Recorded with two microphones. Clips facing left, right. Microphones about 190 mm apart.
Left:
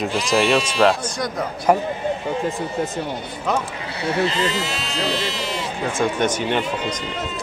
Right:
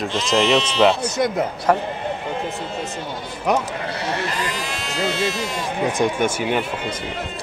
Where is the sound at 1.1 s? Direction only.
25° right (ahead or behind).